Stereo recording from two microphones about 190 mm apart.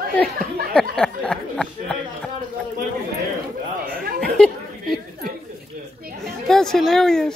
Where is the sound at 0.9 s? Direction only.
5° left (ahead or behind).